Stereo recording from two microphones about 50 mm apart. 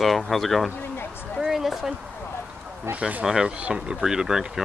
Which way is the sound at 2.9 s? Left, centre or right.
Right.